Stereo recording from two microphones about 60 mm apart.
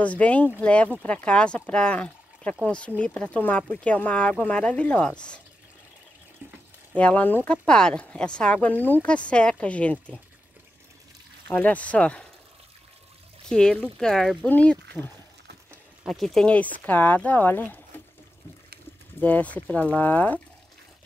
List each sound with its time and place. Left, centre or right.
0.0 s speech: left
7.0 s speech: left
7.4 s speech: centre
8.7 s speech: left
9.0 s speech: centre
11.5 s speech: left
13.5 s speech: centre
14.5 s speech: left
16.1 s speech: centre
16.4 s speech: left
19.1 s speech: left